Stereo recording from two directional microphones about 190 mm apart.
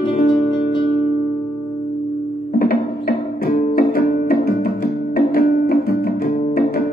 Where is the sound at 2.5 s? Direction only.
55° left (ahead or behind).